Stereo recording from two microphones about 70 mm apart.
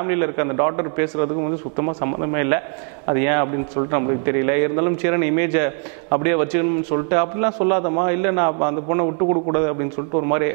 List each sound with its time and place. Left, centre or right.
0.0 s a man's voice: right